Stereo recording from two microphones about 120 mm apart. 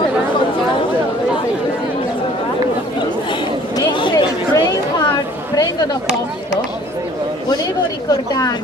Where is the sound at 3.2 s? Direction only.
40° left (ahead or behind).